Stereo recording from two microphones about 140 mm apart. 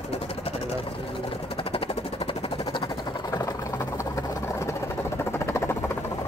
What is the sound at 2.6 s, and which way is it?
Vehicle, 30° left (ahead or behind).